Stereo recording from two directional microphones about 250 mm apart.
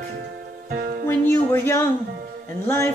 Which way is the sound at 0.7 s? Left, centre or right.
Right.